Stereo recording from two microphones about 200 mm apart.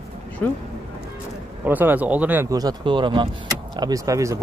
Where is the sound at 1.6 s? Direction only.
10° right (ahead or behind).